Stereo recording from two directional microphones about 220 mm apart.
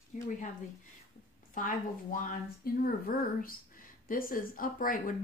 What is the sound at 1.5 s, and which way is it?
Speech, 35° left (ahead or behind).